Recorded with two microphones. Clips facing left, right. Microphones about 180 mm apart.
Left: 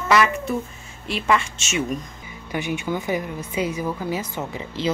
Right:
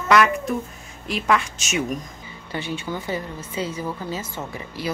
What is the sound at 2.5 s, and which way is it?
A woman's voice, 15° left (ahead or behind).